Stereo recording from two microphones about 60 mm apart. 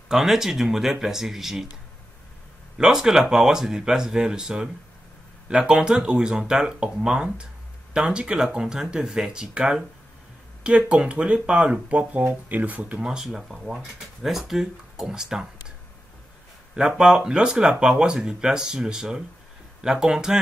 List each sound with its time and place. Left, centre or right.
0.1 s speech: centre
2.8 s speech: centre
13.0 s speech: centre
16.7 s speech: centre